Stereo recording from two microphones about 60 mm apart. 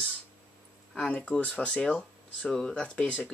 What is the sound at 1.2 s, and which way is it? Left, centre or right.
Speech, centre.